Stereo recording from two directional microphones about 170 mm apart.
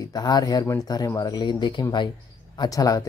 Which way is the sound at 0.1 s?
25° left (ahead or behind).